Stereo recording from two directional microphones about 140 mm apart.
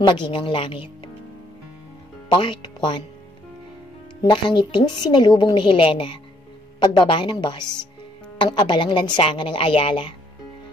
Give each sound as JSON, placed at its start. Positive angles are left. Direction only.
{"t": 0.0, "sound": "a woman's voice", "side_deg": 35}
{"t": 2.2, "sound": "speech", "side_deg": 35}
{"t": 4.2, "sound": "a woman's voice", "side_deg": 30}